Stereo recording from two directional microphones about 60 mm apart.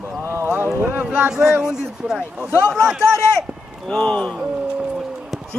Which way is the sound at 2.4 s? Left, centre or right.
Right.